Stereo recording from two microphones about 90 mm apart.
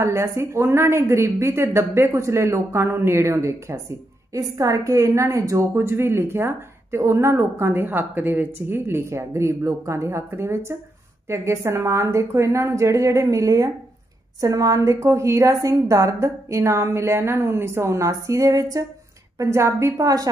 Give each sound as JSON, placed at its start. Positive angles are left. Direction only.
{"t": 0.0, "sound": "a woman's voice", "side_deg": -30}